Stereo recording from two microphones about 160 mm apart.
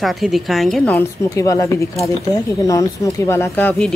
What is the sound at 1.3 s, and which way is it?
Speech, 20° left (ahead or behind).